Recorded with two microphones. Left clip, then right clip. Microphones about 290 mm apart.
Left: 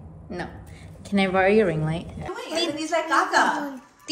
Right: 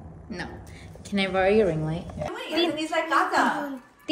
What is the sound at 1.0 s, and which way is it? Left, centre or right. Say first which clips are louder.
Speech: left 3 dB; left.